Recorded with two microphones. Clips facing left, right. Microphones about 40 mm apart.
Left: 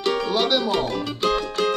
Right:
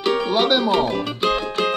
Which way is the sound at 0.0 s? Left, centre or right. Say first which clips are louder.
Right 3 dB; centre.